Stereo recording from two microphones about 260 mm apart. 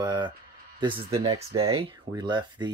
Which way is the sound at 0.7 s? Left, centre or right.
Centre.